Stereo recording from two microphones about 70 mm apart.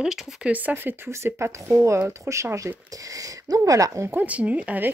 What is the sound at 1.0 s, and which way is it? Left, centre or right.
Speech, right.